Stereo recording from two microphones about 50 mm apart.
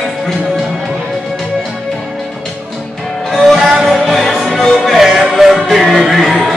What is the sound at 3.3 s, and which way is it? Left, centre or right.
Music, centre.